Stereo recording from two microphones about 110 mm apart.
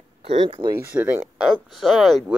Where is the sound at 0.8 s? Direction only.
20° right (ahead or behind).